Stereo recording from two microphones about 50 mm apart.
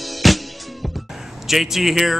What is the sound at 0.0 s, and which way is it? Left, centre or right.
Music, centre.